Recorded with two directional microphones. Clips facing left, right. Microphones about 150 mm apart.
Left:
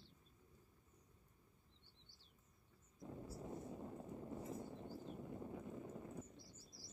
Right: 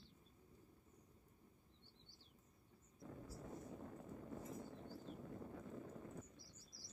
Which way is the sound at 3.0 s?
20° left (ahead or behind).